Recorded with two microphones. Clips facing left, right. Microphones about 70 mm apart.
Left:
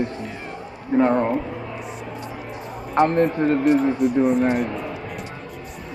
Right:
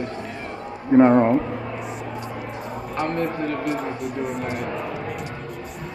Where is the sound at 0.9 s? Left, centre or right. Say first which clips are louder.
Right 4 dB; centre.